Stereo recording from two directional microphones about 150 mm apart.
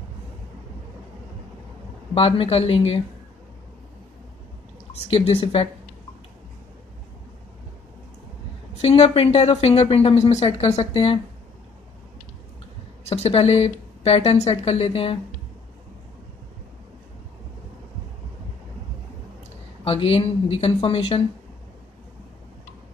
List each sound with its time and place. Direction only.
2.1 s a woman's voice: 40° left (ahead or behind)
5.1 s a woman's voice: 40° left (ahead or behind)
8.7 s a woman's voice: 45° left (ahead or behind)
13.1 s a woman's voice: 45° left (ahead or behind)
19.8 s a woman's voice: 40° left (ahead or behind)